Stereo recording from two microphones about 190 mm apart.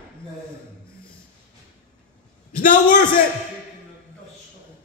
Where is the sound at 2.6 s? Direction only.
45° left (ahead or behind).